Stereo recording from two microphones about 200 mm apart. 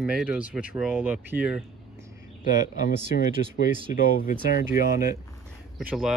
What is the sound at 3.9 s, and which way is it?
Speech, 40° left (ahead or behind).